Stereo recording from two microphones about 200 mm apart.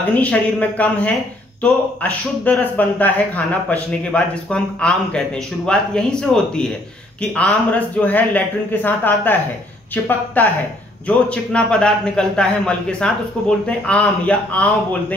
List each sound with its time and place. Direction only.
0.1 s a man's voice: 10° left (ahead or behind)